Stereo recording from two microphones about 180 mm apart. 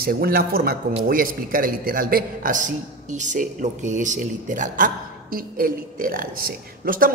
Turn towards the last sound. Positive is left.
turn(degrees=-55)  # may be behind; listen again after turning